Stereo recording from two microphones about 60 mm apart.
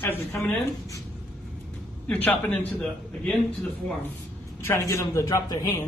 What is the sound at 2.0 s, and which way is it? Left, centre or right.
A man's voice, left.